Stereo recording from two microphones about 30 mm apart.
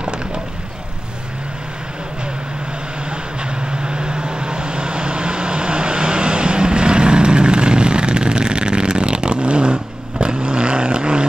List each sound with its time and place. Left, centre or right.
3.7 s vehicle: right